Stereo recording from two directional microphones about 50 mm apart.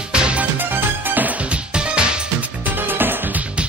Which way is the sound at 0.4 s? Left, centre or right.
Right.